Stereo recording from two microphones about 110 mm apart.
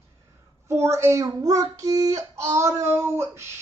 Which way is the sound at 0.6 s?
25° right (ahead or behind).